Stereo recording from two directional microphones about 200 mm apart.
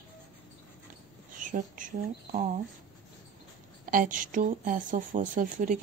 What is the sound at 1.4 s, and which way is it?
Speech, 40° right (ahead or behind).